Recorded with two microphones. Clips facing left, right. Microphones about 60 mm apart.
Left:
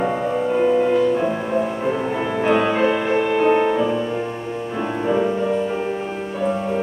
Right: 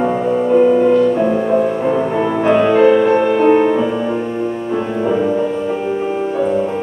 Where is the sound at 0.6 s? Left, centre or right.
Centre.